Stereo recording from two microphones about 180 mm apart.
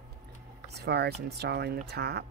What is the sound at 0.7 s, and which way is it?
Speech, 65° right (ahead or behind).